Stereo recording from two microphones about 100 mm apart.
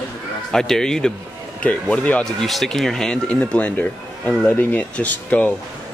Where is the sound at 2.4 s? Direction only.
Centre (ahead or behind).